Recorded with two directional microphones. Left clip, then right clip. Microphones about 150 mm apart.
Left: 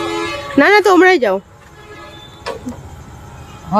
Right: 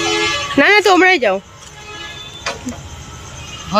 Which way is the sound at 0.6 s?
35° left (ahead or behind).